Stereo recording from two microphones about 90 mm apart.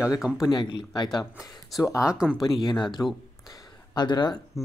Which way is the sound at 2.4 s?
55° left (ahead or behind).